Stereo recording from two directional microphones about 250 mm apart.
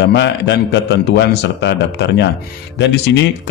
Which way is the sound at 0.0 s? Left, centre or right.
Left.